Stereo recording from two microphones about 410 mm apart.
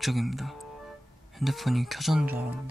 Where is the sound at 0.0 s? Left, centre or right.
Centre.